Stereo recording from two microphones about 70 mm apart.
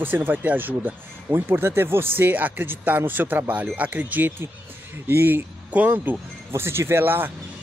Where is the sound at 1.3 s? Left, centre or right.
Right.